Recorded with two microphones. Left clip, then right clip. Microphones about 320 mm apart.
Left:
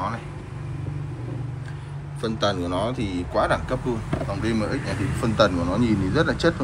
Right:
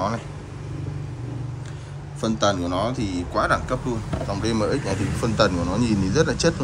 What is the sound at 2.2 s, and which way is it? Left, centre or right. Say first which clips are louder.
Speech: right 2 dB; centre.